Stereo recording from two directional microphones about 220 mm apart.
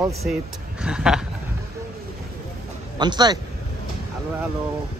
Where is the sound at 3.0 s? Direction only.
20° right (ahead or behind).